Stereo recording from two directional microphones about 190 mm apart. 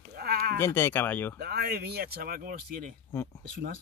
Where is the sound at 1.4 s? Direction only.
55° right (ahead or behind).